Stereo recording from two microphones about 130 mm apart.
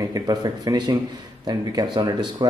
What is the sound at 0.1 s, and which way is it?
Speech, 30° right (ahead or behind).